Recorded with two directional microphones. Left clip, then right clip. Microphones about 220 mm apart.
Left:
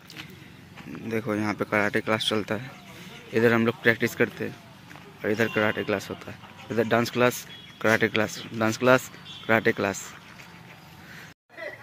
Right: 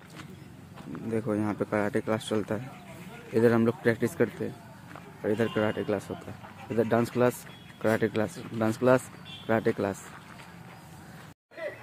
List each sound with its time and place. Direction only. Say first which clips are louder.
0.9 s speech: left 2 dB; 10° left (ahead or behind)